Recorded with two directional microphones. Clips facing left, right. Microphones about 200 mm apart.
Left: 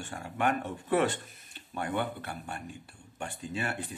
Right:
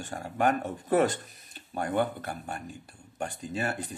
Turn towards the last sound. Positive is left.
turn(degrees=-40)  # may be behind; listen again after turning